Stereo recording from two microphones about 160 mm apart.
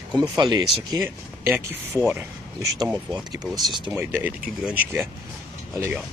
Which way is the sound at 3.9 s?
15° right (ahead or behind).